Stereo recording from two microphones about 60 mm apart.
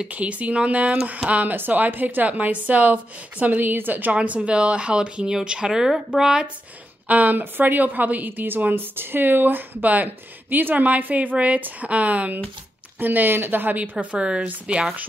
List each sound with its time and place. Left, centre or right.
0.0 s a woman's voice: right
7.1 s a woman's voice: right
13.9 s a woman's voice: centre